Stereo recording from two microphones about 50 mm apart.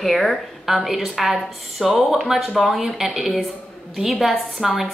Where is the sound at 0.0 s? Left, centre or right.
Centre.